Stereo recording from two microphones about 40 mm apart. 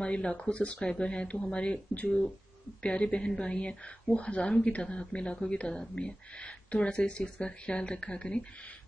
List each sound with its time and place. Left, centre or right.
0.0 s speech: left
2.8 s speech: left